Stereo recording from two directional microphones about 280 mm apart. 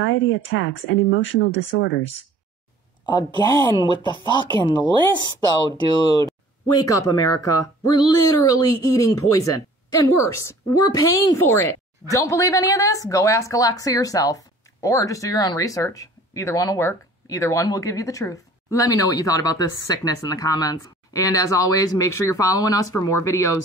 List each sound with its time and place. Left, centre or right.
0.0 s speech: left
3.1 s speech: centre
6.2 s speech: centre